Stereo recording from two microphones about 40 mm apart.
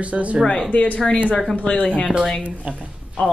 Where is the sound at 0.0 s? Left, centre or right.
Right.